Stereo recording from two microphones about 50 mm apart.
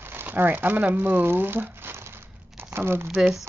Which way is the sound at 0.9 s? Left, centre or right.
Right.